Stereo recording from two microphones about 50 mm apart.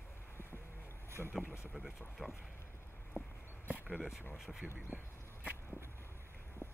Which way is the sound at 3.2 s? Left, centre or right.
Left.